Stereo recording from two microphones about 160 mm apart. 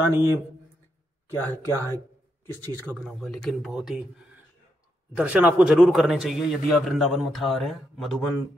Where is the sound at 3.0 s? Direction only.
Centre (ahead or behind).